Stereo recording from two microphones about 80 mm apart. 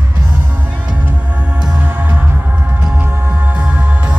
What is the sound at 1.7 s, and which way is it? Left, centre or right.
Music, right.